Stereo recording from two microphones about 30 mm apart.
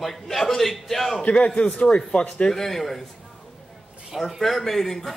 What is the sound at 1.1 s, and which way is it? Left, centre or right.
A man's voice, left.